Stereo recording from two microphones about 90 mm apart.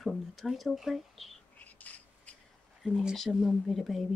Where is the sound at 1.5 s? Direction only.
20° left (ahead or behind).